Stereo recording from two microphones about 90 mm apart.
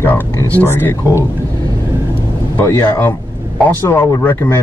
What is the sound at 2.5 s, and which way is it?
Speech, 20° left (ahead or behind).